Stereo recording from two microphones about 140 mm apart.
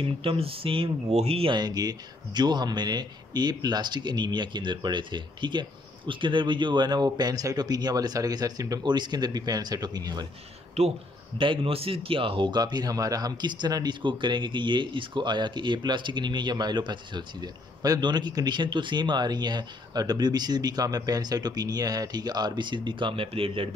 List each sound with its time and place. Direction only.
0.0 s speech: 40° right (ahead or behind)
10.8 s speech: 50° right (ahead or behind)
11.3 s speech: 40° right (ahead or behind)